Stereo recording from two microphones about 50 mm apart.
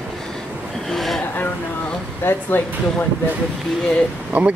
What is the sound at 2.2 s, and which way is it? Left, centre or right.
Speech, left.